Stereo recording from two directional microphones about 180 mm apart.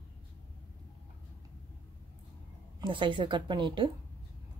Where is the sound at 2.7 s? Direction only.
25° right (ahead or behind).